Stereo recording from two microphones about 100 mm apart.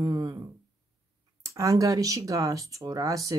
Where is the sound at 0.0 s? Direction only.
40° right (ahead or behind).